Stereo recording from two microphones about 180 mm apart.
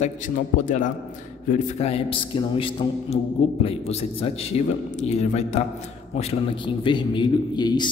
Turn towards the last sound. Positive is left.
turn(degrees=25)  # may be behind; listen again after turning